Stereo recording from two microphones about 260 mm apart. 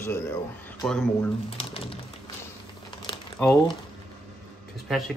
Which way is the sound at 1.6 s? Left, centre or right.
Centre.